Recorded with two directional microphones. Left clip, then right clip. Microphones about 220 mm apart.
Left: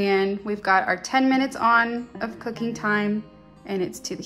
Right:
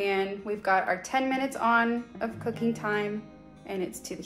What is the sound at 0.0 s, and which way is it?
Speech, 40° left (ahead or behind).